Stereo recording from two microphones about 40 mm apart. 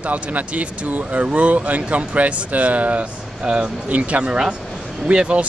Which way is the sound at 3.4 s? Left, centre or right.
Right.